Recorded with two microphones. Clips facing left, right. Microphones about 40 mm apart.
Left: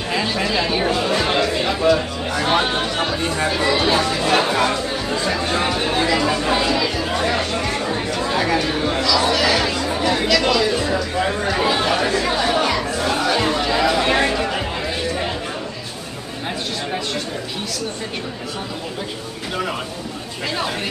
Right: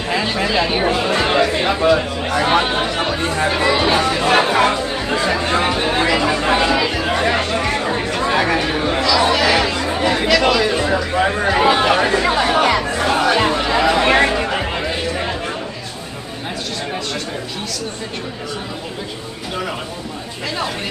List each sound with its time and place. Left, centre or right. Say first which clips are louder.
0.7 s chatter: right 2 dB; right
1.7 s a man's voice: right 2 dB; right
3.7 s speech: right 2 dB; right
5.6 s chatter: right 2 dB; centre
11.1 s a sound: right 6 dB; right
11.7 s chatter: right 4 dB; right
13.8 s chatter: right 5 dB; right
14.3 s chatter: right 2 dB; right